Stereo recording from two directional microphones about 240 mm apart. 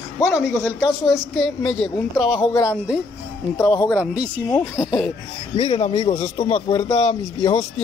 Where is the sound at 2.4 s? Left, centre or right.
Centre.